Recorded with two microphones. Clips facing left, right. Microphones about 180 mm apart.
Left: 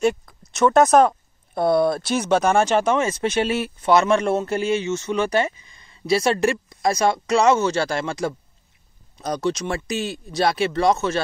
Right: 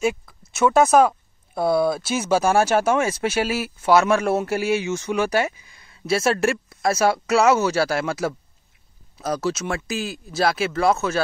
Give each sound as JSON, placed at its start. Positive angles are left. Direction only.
{"t": 0.0, "sound": "speech", "side_deg": -5}